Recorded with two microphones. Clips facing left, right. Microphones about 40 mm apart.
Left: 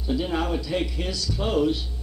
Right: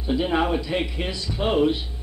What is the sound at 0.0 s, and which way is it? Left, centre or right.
A man's voice, right.